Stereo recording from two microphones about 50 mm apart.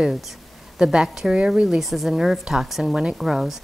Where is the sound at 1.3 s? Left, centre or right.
Right.